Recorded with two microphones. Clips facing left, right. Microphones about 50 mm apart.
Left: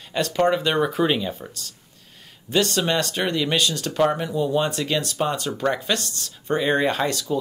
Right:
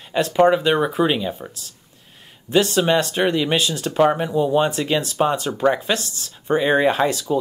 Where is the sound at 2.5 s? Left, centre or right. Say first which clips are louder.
Right 4 dB; centre.